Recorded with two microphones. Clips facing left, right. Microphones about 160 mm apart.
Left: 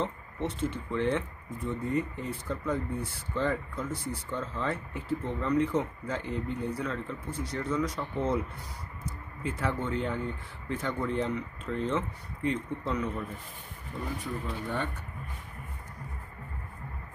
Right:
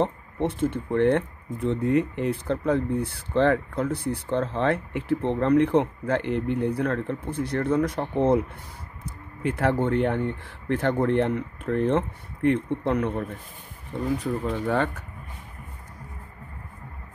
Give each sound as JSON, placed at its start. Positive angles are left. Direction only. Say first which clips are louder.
{"t": 0.0, "sound": "speech", "louder": "right 7 dB", "side_deg": -55}
{"t": 9.4, "sound": "speech", "louder": "right 8 dB", "side_deg": -65}
{"t": 14.5, "sound": "speech", "louder": "right 9 dB", "side_deg": -90}